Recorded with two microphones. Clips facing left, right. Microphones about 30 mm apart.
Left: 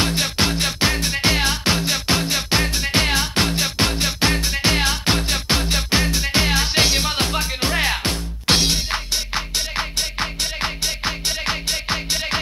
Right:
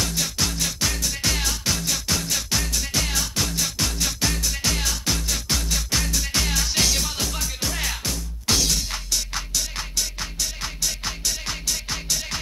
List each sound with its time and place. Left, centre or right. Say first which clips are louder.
0.0 s music: left 6 dB; left